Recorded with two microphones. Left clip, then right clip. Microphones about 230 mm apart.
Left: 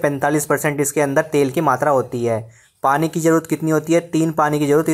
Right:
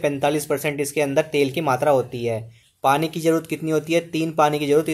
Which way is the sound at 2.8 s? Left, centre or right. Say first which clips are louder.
Left 2 dB; left.